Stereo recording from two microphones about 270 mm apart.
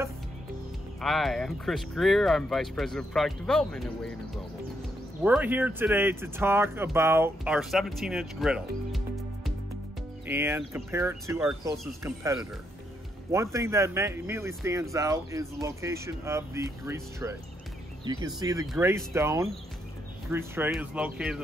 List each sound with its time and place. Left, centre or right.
1.0 s speech: centre
5.2 s speech: centre